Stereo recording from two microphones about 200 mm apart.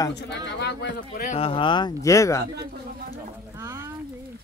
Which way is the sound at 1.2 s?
30° left (ahead or behind).